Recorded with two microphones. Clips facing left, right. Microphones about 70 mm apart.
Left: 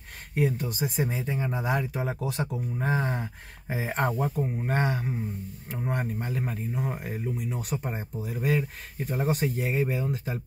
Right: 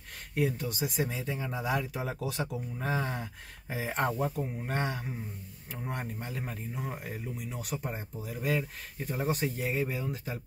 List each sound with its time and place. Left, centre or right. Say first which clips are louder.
0.3 s speech: left 3 dB; left